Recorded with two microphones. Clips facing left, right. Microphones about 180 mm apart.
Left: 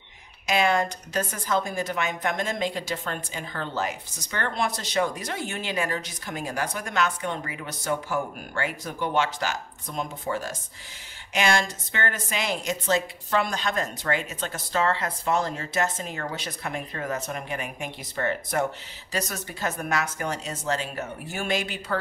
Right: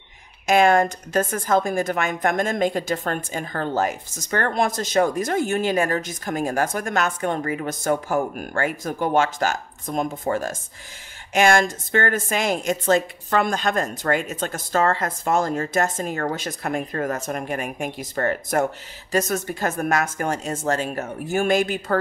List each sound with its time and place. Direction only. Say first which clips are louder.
0.5 s a woman's voice: right 6 dB; 50° right (ahead or behind)